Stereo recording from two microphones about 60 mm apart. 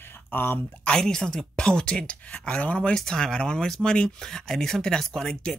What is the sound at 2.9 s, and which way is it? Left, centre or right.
Speech, centre.